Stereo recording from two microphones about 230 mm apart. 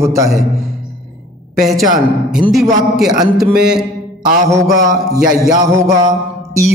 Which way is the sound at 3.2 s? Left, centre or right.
Centre.